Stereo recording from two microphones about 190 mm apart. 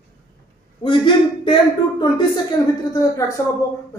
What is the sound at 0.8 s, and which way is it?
Speech, 25° left (ahead or behind).